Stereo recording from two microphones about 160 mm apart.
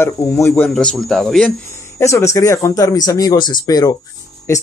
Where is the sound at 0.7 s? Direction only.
Centre (ahead or behind).